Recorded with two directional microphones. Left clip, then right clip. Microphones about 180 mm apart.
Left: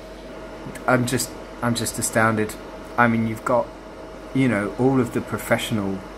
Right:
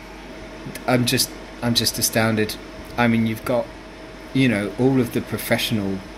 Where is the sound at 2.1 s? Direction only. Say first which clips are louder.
Left 4 dB; 25° right (ahead or behind).